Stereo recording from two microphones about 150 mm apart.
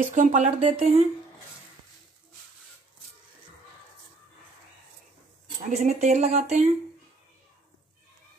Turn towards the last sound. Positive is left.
turn(degrees=-50)  # may be behind; listen again after turning